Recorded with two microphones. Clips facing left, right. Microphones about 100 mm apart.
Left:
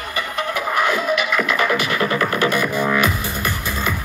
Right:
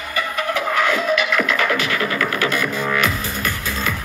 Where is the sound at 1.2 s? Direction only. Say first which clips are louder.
Even; 5° left (ahead or behind).